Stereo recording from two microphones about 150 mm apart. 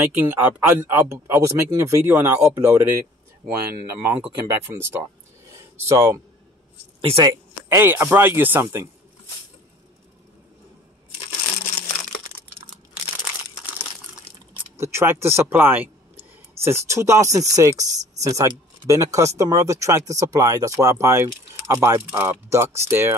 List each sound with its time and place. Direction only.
0.0 s speech: 15° right (ahead or behind)
7.0 s speech: 35° right (ahead or behind)
7.7 s speech: 15° right (ahead or behind)
14.8 s speech: 15° right (ahead or behind)